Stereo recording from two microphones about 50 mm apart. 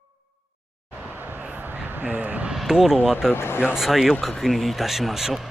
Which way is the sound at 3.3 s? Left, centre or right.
Left.